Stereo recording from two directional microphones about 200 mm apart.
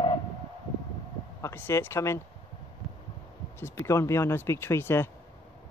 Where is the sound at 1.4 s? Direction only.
10° left (ahead or behind).